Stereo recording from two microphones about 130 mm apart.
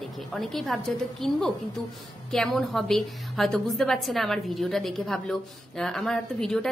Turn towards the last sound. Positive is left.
turn(degrees=5)  # may be behind; listen again after turning